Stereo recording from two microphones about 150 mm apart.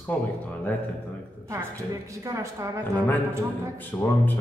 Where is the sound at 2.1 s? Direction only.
20° right (ahead or behind).